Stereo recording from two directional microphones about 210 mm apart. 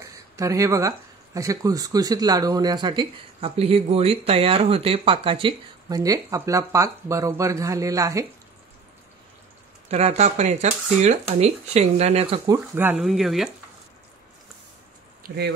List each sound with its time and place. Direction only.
0.0 s speech: 15° right (ahead or behind)
9.8 s speech: 30° right (ahead or behind)
12.4 s speech: 10° right (ahead or behind)
15.2 s speech: 50° right (ahead or behind)